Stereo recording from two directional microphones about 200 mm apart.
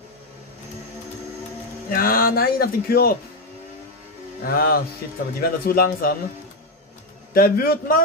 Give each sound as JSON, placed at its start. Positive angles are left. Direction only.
{"t": 1.9, "sound": "speech", "side_deg": 45}
{"t": 4.5, "sound": "speech", "side_deg": 45}
{"t": 7.3, "sound": "speech", "side_deg": 45}